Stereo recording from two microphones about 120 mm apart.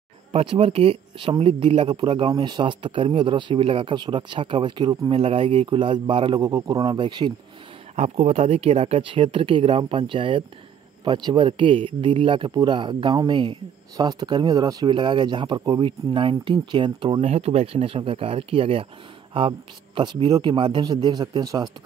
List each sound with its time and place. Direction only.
0.3 s a man's voice: 55° right (ahead or behind); by 7.3 s 40° right (ahead or behind)
7.9 s a man's voice: 60° right (ahead or behind); by 17.2 s 45° right (ahead or behind)
17.2 s a man's voice: 60° right (ahead or behind)
20.0 s speech: 40° right (ahead or behind)